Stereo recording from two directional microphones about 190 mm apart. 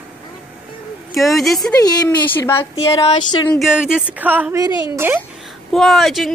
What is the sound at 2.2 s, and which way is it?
Speech, 10° left (ahead or behind).